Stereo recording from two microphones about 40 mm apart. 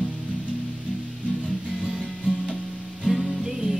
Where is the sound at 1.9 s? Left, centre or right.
Right.